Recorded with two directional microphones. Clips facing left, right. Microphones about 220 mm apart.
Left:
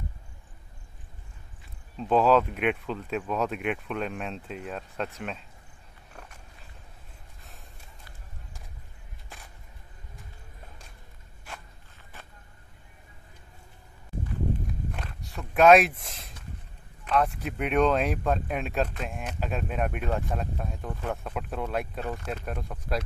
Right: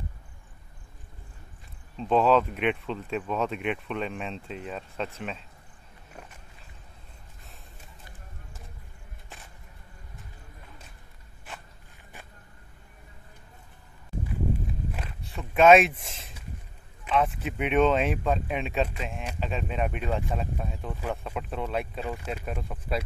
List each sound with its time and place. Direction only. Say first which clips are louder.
2.0 s speech: even; centre (ahead or behind)
14.9 s a sound: right 1 dB; 5° right (ahead or behind)
17.0 s speech: even; centre (ahead or behind)
22.0 s speech: even; 10° right (ahead or behind)